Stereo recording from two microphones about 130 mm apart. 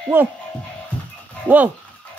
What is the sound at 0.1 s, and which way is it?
Speech, 15° right (ahead or behind).